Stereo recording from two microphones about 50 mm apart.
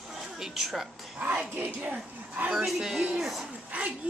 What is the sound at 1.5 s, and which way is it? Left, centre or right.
Speech, right.